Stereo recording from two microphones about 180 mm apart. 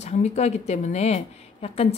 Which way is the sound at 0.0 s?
35° left (ahead or behind).